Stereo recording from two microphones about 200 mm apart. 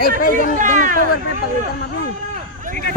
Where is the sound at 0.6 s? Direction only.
40° right (ahead or behind).